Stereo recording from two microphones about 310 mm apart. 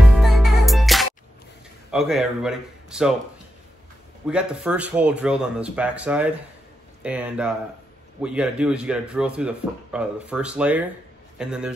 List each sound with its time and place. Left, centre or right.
0.0 s music: centre
1.9 s speech: centre
4.3 s speech: centre